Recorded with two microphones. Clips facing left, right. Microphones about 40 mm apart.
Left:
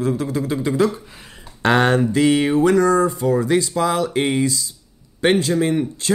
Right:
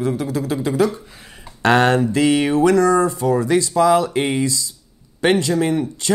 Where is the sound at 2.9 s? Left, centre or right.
Right.